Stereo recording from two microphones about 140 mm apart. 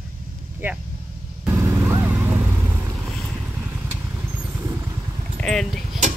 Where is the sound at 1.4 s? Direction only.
20° right (ahead or behind).